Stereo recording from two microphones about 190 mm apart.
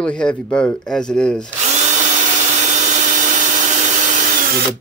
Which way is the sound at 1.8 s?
40° right (ahead or behind).